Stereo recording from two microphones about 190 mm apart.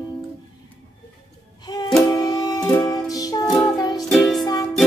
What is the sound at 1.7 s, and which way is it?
Music, 20° left (ahead or behind).